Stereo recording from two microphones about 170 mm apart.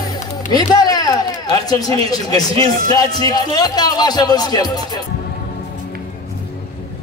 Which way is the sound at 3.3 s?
25° left (ahead or behind).